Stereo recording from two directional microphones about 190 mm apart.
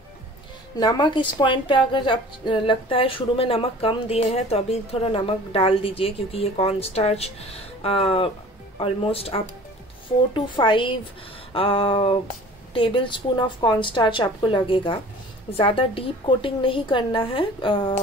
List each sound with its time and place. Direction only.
0.7 s a woman's voice: 20° left (ahead or behind)